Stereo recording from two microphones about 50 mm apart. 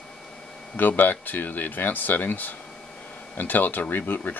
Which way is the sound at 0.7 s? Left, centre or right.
Left.